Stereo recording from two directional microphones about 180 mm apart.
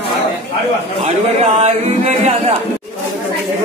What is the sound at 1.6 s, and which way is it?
Chant, 40° right (ahead or behind).